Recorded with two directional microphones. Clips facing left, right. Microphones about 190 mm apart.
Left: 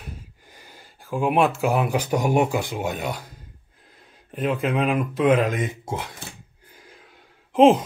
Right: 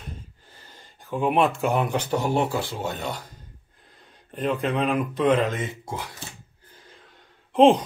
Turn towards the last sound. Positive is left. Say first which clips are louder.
# left 1 dB
turn(degrees=5)  # may be behind; listen again after turning